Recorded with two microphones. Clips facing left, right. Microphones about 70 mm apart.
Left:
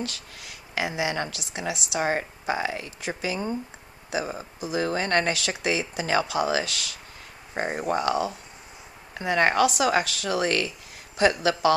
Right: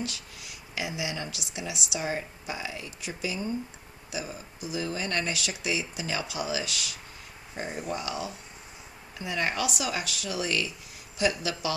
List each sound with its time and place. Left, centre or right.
0.7 s speech: left
4.1 s speech: left
7.5 s speech: left